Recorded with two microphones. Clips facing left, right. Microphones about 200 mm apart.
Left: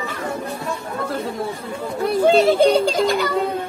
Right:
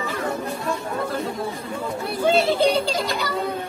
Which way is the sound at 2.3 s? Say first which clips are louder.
Left 4 dB; 45° left (ahead or behind).